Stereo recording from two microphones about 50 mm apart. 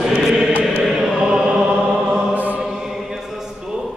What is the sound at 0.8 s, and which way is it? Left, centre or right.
Choir, centre.